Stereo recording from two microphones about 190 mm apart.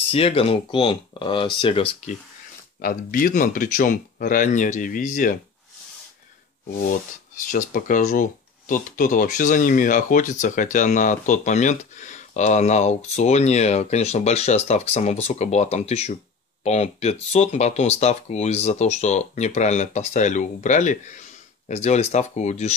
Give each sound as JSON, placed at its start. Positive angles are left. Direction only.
{"t": 0.1, "sound": "speech", "side_deg": 30}
{"t": 2.8, "sound": "speech", "side_deg": 50}
{"t": 6.9, "sound": "speech", "side_deg": 45}